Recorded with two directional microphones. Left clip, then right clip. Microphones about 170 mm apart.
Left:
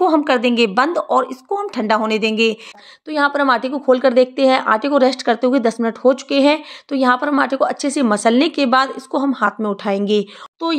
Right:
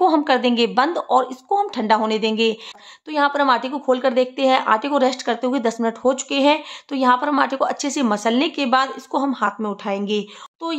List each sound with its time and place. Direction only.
0.0 s a woman's voice: 15° left (ahead or behind)